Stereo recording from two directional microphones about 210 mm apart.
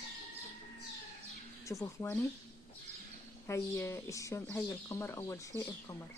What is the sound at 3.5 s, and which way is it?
Speech, 15° left (ahead or behind).